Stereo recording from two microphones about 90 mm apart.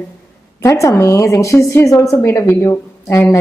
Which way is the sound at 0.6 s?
35° left (ahead or behind).